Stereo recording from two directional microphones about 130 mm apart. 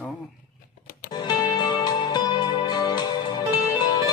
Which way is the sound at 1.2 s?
30° left (ahead or behind).